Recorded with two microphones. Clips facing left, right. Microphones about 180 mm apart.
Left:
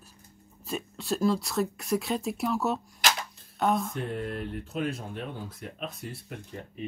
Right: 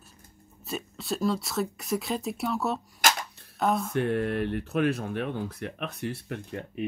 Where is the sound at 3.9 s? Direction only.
75° right (ahead or behind).